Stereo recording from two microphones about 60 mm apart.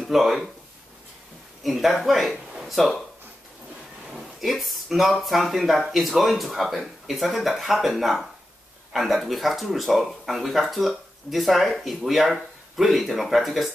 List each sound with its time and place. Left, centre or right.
0.0 s speech: centre
1.6 s speech: centre
4.1 s a sound: centre
5.2 s speech: centre